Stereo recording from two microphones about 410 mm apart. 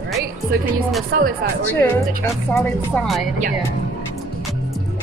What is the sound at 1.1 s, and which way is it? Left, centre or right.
Speech, right.